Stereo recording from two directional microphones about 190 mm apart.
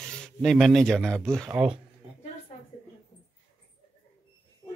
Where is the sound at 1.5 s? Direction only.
5° right (ahead or behind).